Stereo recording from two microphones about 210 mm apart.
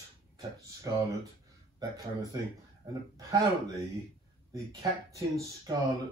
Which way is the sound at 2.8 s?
15° right (ahead or behind).